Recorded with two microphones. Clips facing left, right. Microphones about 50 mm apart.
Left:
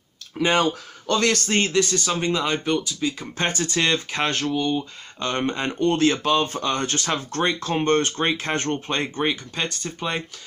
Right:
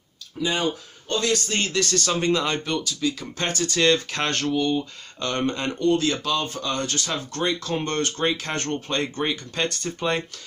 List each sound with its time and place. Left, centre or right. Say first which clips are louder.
0.4 s speech: left 4 dB; left
1.7 s speech: left 2 dB; centre
5.2 s speech: left 1 dB; left
5.8 s speech: left 2 dB; left
9.2 s speech: left 1 dB; centre